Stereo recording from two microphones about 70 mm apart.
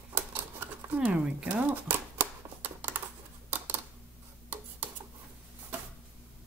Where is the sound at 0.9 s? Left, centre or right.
Centre.